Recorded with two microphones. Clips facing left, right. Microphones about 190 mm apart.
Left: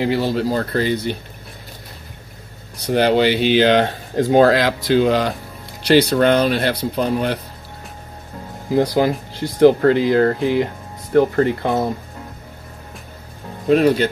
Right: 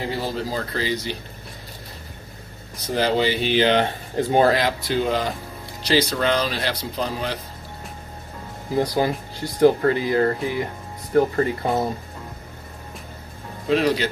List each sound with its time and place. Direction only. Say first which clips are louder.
0.0 s speech: left 8 dB; 80° left; by 1.1 s 55° left (ahead or behind)
2.9 s speech: left 6 dB; 65° left (ahead or behind); by 5.3 s 80° left
5.9 s speech: left 7 dB; 65° left (ahead or behind)
8.7 s speech: left 5 dB; 85° left
11.1 s speech: left 4 dB; 75° left (ahead or behind)
13.7 s speech: left 6 dB; 50° left (ahead or behind)